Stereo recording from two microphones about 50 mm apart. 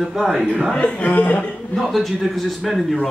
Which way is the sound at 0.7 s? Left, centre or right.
Left.